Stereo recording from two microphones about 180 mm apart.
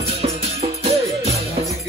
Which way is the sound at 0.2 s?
35° right (ahead or behind).